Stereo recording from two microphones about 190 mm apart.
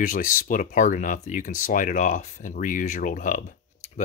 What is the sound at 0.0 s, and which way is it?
Speech, 45° left (ahead or behind).